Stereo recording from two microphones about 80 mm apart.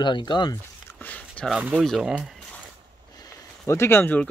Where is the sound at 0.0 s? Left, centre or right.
Left.